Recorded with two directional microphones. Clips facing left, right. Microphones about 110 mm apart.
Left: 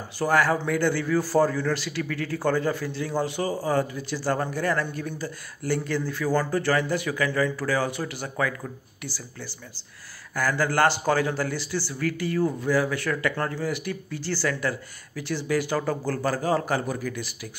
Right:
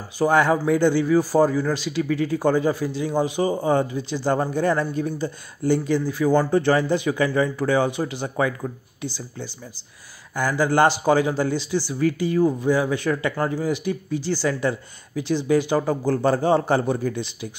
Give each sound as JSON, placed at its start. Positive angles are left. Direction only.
{"t": 0.2, "sound": "a man's voice", "side_deg": -20}